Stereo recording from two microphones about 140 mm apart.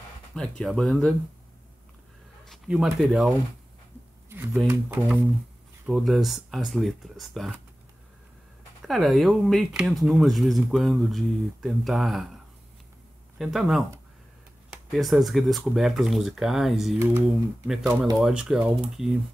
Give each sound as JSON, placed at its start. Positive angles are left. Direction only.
{"t": 0.3, "sound": "speech", "side_deg": 5}
{"t": 2.7, "sound": "speech", "side_deg": 0}
{"t": 4.3, "sound": "a sound", "side_deg": -15}
{"t": 4.8, "sound": "speech", "side_deg": -5}
{"t": 8.8, "sound": "speech", "side_deg": 0}
{"t": 13.4, "sound": "speech", "side_deg": 0}